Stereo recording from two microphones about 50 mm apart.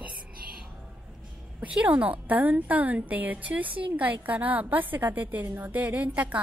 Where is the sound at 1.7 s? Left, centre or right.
Right.